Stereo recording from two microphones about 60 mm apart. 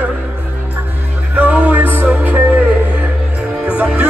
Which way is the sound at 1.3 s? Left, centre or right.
Right.